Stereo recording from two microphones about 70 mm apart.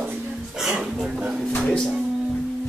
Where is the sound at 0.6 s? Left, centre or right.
Centre.